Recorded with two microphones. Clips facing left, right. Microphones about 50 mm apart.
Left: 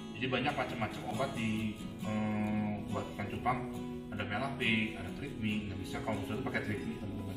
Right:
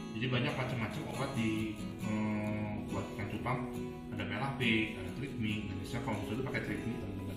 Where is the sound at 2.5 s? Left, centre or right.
Centre.